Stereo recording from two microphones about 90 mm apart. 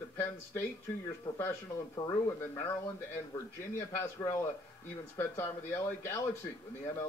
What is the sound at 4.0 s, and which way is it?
Speech, 35° left (ahead or behind).